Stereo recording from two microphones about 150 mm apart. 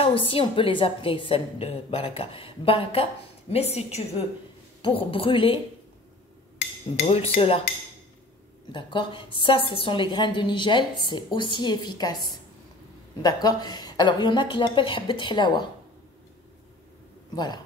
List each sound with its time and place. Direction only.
0.0 s a woman's voice: 35° left (ahead or behind)
7.1 s a woman's voice: 40° left (ahead or behind)
8.7 s a woman's voice: 35° left (ahead or behind)